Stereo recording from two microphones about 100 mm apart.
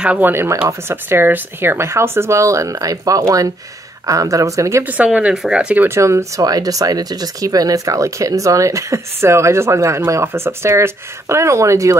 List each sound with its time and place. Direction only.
0.0 s speech: 10° right (ahead or behind)
0.3 s speech: 25° right (ahead or behind)
4.8 s speech: 15° right (ahead or behind)
5.9 s speech: 30° right (ahead or behind)